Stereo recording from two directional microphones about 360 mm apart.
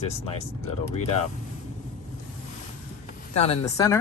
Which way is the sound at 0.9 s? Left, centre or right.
Centre.